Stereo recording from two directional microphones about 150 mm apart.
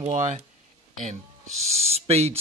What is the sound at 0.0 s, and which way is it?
Speech, 55° right (ahead or behind).